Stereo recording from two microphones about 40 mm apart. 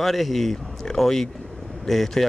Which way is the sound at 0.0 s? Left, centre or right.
Centre.